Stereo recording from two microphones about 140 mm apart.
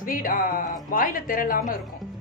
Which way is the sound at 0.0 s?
80° left.